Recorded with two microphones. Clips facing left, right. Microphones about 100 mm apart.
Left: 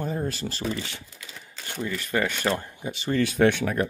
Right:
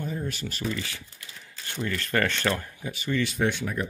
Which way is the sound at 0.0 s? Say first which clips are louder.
Left 3 dB; 40° left (ahead or behind).